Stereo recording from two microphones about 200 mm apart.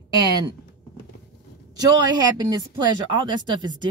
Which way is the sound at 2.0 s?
20° right (ahead or behind).